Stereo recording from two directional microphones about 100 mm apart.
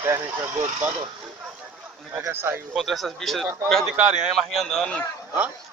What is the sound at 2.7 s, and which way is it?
Speech, centre (ahead or behind).